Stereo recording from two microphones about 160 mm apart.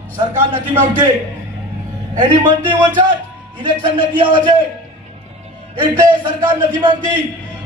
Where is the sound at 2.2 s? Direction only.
30° right (ahead or behind).